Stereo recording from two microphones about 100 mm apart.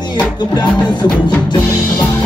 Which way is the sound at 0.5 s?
45° left (ahead or behind).